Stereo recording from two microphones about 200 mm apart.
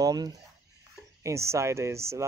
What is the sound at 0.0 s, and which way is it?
Speech, 20° right (ahead or behind).